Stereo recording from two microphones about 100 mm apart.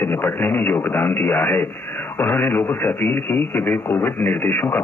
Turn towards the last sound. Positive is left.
turn(degrees=20)  # may be behind; listen again after turning